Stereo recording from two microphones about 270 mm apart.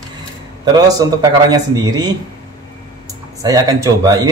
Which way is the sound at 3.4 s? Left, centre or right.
Centre.